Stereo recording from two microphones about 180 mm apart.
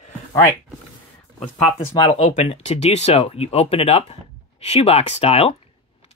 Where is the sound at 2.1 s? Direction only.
35° left (ahead or behind).